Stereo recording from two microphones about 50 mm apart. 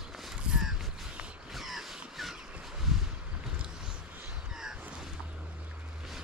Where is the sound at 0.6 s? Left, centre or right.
Centre.